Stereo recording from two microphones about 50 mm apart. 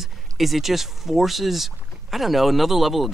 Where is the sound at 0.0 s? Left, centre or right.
Centre.